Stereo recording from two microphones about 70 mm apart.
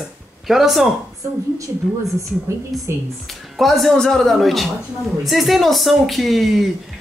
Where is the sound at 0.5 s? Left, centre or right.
Centre.